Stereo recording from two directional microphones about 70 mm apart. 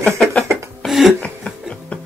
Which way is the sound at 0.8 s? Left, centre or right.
Centre.